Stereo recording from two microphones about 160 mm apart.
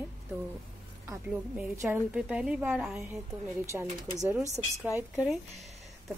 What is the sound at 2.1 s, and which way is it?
A woman's voice, 5° right (ahead or behind).